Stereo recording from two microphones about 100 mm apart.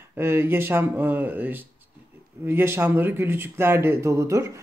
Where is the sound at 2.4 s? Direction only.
25° right (ahead or behind).